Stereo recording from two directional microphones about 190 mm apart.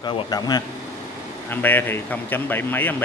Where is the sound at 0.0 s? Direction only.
20° left (ahead or behind).